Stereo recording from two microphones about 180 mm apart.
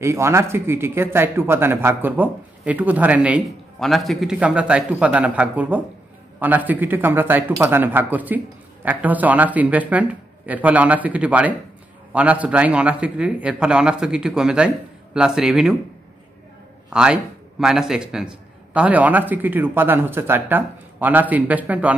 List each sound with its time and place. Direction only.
0.0 s a man's voice: 15° right (ahead or behind)
16.9 s speech: 5° right (ahead or behind)